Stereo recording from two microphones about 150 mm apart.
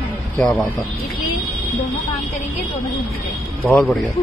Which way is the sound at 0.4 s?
5° left (ahead or behind).